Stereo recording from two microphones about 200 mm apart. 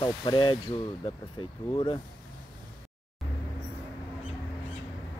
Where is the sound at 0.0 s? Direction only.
25° left (ahead or behind).